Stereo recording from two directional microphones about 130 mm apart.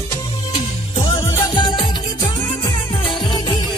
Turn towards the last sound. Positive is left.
turn(degrees=35)  # may be behind; listen again after turning